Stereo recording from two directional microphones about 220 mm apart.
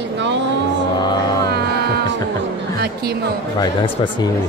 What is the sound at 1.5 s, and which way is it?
Music, 45° right (ahead or behind).